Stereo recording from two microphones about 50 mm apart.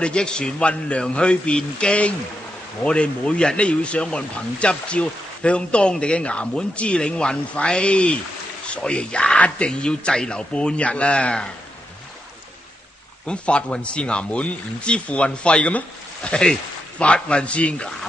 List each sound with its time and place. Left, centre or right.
0.0 s a man's voice: centre
13.3 s a man's voice: left